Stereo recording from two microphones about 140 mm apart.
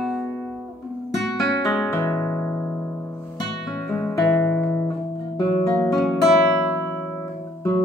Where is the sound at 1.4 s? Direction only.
20° left (ahead or behind).